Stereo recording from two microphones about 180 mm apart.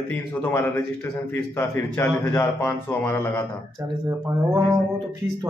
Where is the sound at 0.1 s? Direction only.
10° left (ahead or behind).